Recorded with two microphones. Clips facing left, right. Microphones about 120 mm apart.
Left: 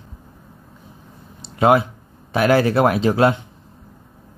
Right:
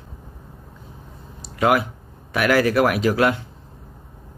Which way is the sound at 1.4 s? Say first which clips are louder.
Left 4 dB; 25° left (ahead or behind).